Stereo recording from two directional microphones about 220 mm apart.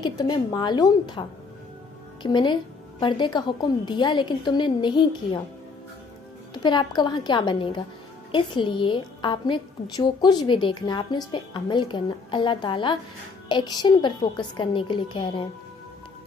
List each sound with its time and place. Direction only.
0.0 s a woman's voice: 20° left (ahead or behind)
2.2 s a woman's voice: 20° left (ahead or behind)
6.5 s a woman's voice: 20° left (ahead or behind)